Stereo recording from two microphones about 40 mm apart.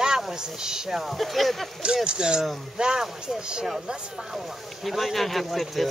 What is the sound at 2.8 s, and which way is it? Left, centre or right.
Speech, centre.